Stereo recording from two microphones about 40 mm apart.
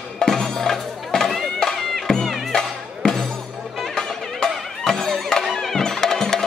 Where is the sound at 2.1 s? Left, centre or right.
Centre.